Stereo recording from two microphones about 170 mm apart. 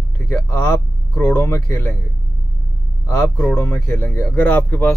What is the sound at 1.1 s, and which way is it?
Speech, 10° left (ahead or behind).